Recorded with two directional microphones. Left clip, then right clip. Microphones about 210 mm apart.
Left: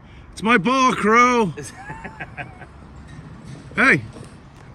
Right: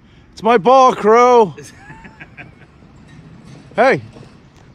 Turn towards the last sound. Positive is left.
turn(degrees=-5)  # may be behind; listen again after turning